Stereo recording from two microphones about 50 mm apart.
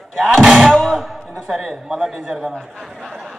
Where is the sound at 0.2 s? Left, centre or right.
Centre.